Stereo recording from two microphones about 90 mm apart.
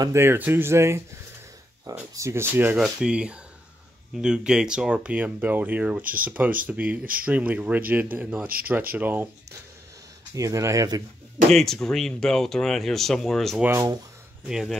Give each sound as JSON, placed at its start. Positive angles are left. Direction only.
{"t": 0.1, "sound": "speech", "side_deg": -25}
{"t": 2.7, "sound": "speech", "side_deg": -10}
{"t": 10.3, "sound": "speech", "side_deg": -35}
{"t": 11.5, "sound": "speech", "side_deg": 5}
{"t": 13.7, "sound": "speech", "side_deg": -35}
{"t": 14.5, "sound": "speech", "side_deg": -5}